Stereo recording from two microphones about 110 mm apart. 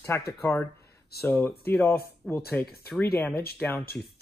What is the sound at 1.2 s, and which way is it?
Speech, 15° left (ahead or behind).